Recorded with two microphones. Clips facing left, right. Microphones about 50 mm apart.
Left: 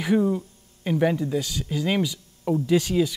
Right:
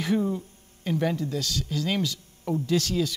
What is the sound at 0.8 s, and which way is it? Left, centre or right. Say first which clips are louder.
Speech: left 4 dB; centre.